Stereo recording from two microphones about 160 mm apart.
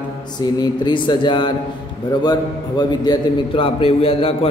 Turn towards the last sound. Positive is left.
turn(degrees=35)  # may be behind; listen again after turning